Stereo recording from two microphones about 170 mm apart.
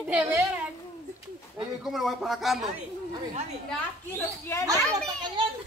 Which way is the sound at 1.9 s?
Centre (ahead or behind).